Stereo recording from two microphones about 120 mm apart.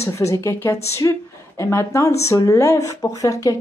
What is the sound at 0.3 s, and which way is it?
Speech, 25° left (ahead or behind).